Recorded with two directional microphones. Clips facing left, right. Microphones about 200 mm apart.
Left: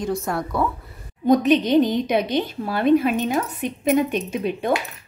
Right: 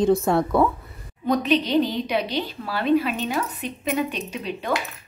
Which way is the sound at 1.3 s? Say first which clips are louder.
Left 5 dB; 45° left (ahead or behind).